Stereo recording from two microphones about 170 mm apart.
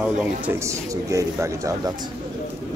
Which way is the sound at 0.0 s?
10° right (ahead or behind).